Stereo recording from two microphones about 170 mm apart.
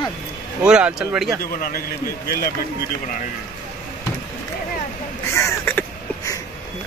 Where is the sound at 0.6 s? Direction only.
5° right (ahead or behind).